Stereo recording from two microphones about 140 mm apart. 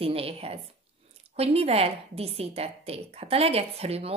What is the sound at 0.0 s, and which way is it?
Speech, 45° right (ahead or behind).